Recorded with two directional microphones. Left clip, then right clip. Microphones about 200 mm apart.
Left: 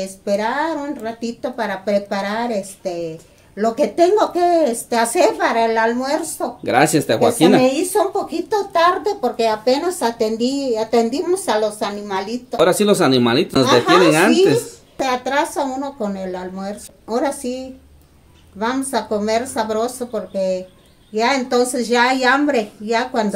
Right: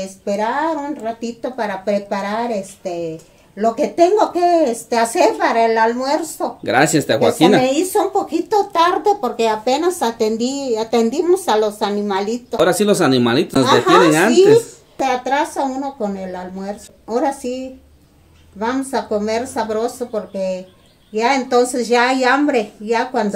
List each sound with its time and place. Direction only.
0.0 s a woman's voice: centre (ahead or behind)
7.6 s speech: 20° right (ahead or behind)
12.5 s a woman's voice: centre (ahead or behind)
18.6 s a woman's voice: centre (ahead or behind)